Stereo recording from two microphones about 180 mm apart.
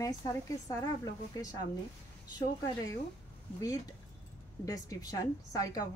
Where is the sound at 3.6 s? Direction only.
20° left (ahead or behind).